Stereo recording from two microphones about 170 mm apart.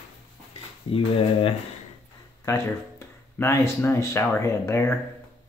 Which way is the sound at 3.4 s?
15° left (ahead or behind).